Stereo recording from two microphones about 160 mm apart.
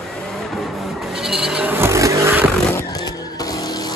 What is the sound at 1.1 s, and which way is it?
Vehicle, 5° right (ahead or behind).